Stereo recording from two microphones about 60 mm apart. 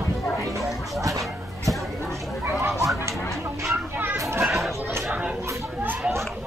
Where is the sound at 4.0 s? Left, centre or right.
Right.